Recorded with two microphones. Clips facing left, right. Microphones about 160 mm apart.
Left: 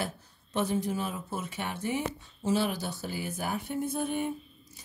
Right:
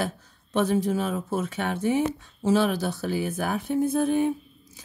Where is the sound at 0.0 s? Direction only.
90° right.